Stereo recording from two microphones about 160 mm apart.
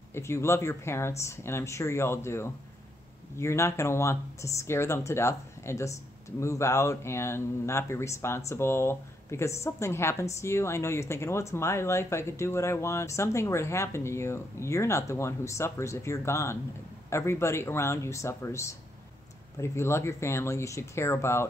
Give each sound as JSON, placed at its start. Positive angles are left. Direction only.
{"t": 0.1, "sound": "speech", "side_deg": 15}